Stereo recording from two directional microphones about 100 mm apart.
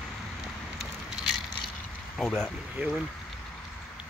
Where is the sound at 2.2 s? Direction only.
5° left (ahead or behind).